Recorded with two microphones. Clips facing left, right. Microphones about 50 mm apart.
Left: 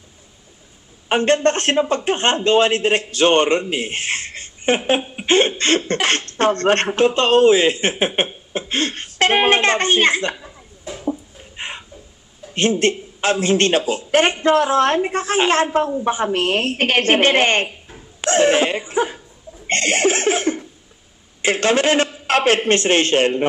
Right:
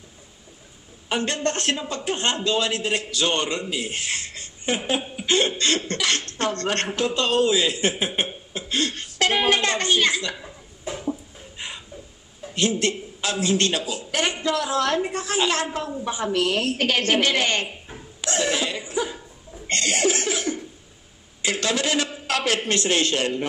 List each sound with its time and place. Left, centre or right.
1.0 s speech: left
11.5 s a sound: left
12.5 s speech: left
19.7 s laughter: left
21.4 s speech: left